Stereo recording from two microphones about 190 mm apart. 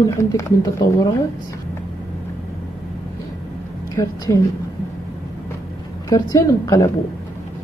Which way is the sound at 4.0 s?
15° left (ahead or behind).